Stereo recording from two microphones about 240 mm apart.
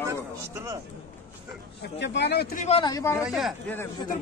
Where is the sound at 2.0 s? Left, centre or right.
Left.